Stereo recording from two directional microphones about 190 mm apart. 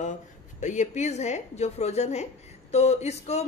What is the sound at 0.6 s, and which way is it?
A woman's voice, 40° left (ahead or behind).